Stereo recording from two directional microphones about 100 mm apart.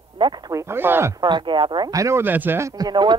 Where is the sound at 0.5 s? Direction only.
25° right (ahead or behind).